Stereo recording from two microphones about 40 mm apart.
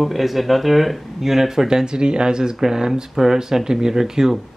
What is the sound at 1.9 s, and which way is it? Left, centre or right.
Speech, right.